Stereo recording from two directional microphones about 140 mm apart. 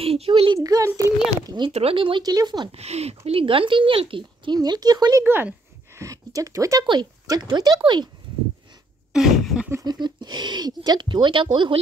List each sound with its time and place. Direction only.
0.0 s a child's voice: 45° right (ahead or behind)
0.6 s a child's voice: 25° right (ahead or behind)
1.7 s speech: 45° right (ahead or behind)
2.7 s speech: 50° right (ahead or behind); by 5.2 s 25° right (ahead or behind)
5.2 s speech: 15° right (ahead or behind); by 8.1 s 30° right (ahead or behind)
9.1 s a sound: 5° right (ahead or behind)
9.7 s speech: 25° right (ahead or behind)